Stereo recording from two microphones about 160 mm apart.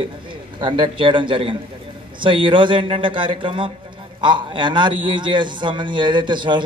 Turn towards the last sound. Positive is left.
turn(degrees=-30)  # may be behind; listen again after turning